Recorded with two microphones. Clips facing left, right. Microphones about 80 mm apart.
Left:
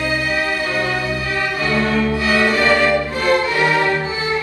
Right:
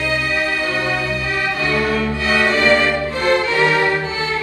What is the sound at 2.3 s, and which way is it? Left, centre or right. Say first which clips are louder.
Music: right 2 dB; right.